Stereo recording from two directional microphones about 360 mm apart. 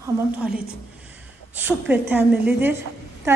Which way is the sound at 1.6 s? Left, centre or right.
Centre.